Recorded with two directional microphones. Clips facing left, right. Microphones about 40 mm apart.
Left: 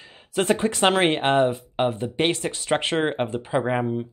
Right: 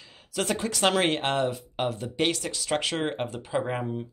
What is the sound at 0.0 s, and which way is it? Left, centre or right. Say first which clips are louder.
Speech: left 6 dB; left.